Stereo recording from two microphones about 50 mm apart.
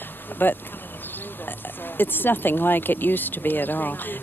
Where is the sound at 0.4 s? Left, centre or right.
Left.